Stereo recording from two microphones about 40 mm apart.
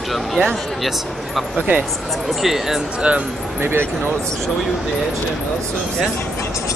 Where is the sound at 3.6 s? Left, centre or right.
Right.